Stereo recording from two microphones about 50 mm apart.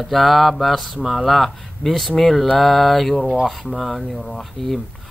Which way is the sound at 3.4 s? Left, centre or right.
Centre.